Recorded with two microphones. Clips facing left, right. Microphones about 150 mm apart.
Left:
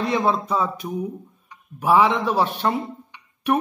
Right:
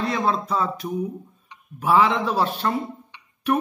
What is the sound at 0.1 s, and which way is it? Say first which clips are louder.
Speech: left 2 dB; 15° left (ahead or behind).